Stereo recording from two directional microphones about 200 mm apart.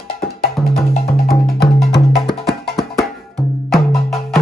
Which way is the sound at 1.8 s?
Centre (ahead or behind).